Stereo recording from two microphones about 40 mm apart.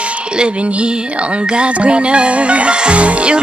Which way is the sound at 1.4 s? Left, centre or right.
Right.